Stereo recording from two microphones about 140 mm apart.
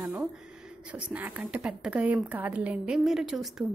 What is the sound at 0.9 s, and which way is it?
A woman's voice, 10° right (ahead or behind).